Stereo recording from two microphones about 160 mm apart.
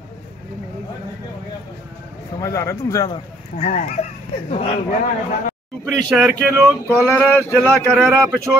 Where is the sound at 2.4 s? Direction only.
20° left (ahead or behind).